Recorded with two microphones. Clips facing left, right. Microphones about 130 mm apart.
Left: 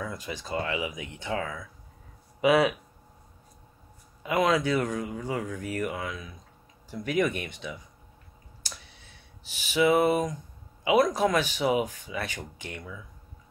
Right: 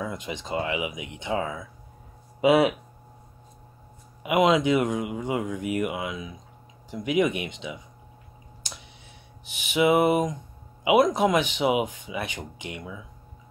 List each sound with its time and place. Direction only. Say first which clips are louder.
0.0 s speech: right 3 dB; 20° right (ahead or behind)
4.2 s speech: right 4 dB; 20° right (ahead or behind)
9.6 s speech: right 2 dB; 20° right (ahead or behind)